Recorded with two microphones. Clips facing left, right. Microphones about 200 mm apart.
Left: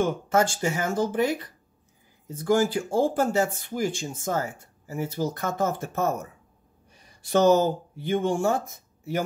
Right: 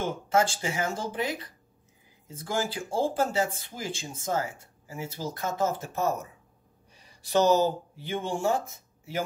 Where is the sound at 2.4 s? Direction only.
50° left (ahead or behind).